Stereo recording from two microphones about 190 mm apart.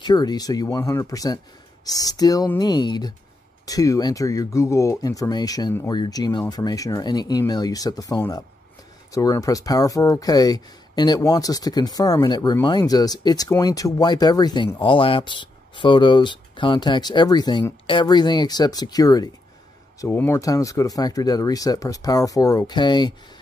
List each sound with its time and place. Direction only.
0.0 s speech: 20° left (ahead or behind)